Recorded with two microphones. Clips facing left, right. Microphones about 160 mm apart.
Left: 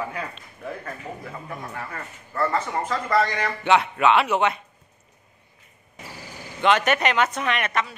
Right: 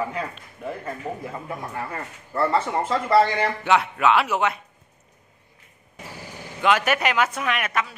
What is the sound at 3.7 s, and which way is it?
Speech, centre (ahead or behind).